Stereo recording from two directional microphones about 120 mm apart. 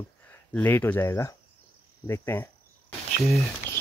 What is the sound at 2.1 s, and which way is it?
Cricket, 20° left (ahead or behind).